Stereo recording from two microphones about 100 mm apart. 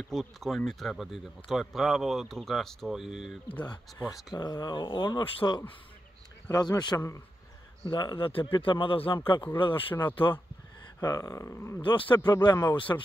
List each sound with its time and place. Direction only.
0.1 s speech: centre (ahead or behind)
4.3 s speech: 45° left (ahead or behind)
8.5 s speech: 60° left (ahead or behind)
9.9 s speech: 20° left (ahead or behind)
11.0 s speech: 35° left (ahead or behind)
11.8 s speech: 55° left (ahead or behind)
12.4 s speech: 40° left (ahead or behind)